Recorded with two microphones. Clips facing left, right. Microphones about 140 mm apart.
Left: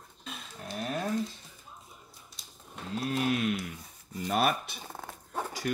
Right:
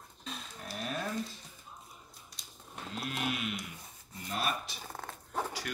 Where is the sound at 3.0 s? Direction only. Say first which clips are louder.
Left 7 dB; 35° left (ahead or behind).